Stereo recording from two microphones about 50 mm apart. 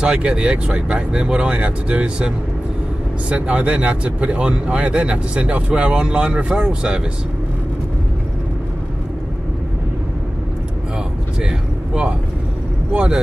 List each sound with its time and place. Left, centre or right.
0.0 s speech: right
11.4 s speech: centre